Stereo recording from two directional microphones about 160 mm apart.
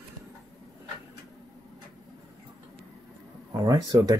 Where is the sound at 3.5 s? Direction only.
20° right (ahead or behind).